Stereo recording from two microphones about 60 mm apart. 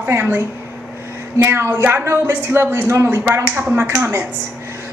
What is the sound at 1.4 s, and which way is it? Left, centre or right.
A woman's voice, right.